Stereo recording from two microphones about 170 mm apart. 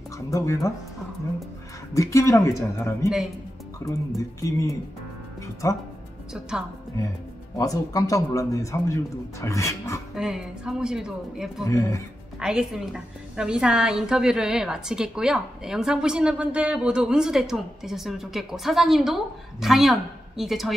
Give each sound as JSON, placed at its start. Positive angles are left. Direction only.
{"t": 0.3, "sound": "speech", "side_deg": 20}
{"t": 2.0, "sound": "speech", "side_deg": 20}
{"t": 7.5, "sound": "speech", "side_deg": 20}
{"t": 10.1, "sound": "a woman's voice", "side_deg": -5}
{"t": 11.6, "sound": "speech", "side_deg": 20}
{"t": 12.4, "sound": "a woman's voice", "side_deg": -5}